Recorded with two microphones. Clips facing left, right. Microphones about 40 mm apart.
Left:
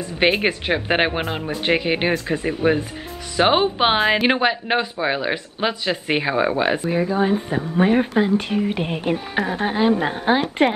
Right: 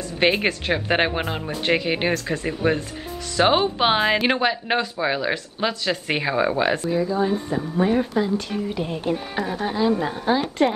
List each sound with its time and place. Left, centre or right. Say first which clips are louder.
0.2 s speech: left 2 dB; centre
6.9 s speech: left 2 dB; left